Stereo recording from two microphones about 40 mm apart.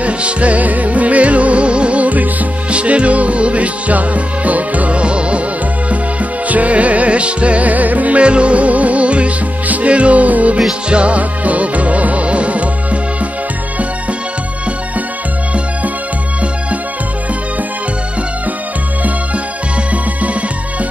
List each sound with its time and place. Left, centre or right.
0.0 s music: right
6.5 s music: right
8.2 s music: right